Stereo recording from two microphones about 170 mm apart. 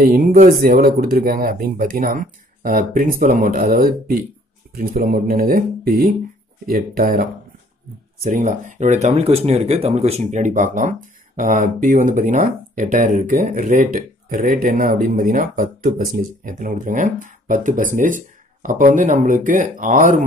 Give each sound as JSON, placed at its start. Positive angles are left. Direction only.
{"t": 0.0, "sound": "speech", "side_deg": -55}
{"t": 8.3, "sound": "speech", "side_deg": -50}